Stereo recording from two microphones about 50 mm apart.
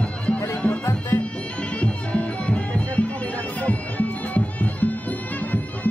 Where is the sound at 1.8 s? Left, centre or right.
Left.